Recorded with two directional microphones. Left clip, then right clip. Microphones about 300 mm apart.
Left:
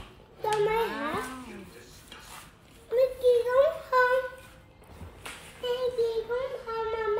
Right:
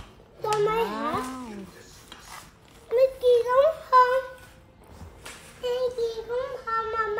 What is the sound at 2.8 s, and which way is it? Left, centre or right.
Child singing, centre.